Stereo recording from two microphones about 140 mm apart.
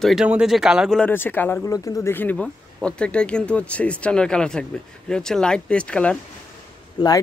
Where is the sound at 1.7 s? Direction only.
25° left (ahead or behind); by 6.1 s 10° left (ahead or behind).